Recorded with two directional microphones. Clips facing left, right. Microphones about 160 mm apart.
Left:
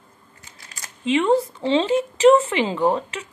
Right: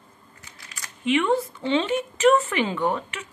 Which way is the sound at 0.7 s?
30° left (ahead or behind).